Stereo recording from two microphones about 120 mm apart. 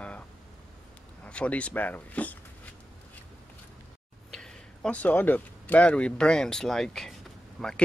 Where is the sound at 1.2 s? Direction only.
10° left (ahead or behind).